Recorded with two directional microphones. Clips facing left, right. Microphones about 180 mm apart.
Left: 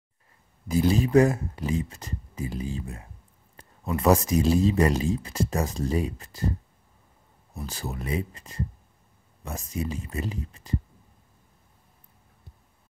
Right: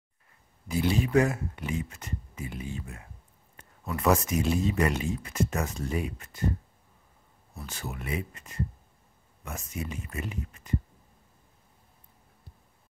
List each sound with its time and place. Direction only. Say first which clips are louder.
0.7 s speech: left 4 dB; 40° left (ahead or behind)
7.5 s speech: left 4 dB; 35° left (ahead or behind)